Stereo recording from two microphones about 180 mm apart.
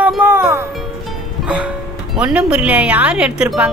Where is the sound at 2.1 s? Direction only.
5° right (ahead or behind).